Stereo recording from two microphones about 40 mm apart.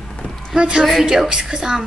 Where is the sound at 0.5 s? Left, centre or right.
Right.